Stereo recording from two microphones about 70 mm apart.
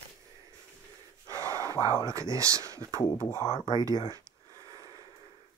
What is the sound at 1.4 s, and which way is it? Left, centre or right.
Gasp, right.